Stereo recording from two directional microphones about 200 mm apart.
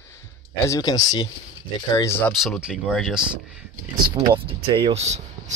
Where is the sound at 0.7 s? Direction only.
20° left (ahead or behind).